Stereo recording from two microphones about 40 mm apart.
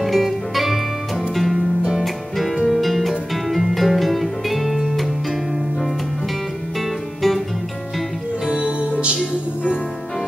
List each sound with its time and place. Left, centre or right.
0.0 s music: centre
7.2 s music: centre
8.5 s music: right